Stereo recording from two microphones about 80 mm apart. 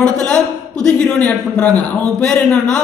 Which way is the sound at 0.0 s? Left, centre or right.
Centre.